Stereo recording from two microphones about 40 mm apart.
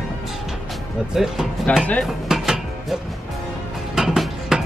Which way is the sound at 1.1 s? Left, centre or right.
Centre.